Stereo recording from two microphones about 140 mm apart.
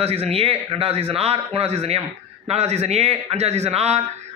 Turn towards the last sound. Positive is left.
turn(degrees=-50)  # may be behind; listen again after turning